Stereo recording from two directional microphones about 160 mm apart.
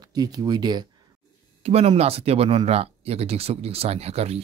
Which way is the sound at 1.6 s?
40° right (ahead or behind).